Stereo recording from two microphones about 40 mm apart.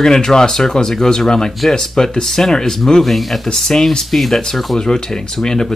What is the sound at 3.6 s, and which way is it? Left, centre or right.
Speech, centre.